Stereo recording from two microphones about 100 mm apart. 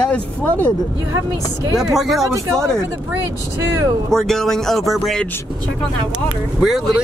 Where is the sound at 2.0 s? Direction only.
Centre (ahead or behind).